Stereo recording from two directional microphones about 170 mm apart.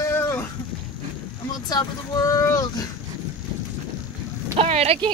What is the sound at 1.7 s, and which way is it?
Speech, 20° left (ahead or behind).